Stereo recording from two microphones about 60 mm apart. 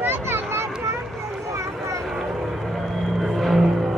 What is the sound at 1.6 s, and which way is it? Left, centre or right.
Vehicle, right.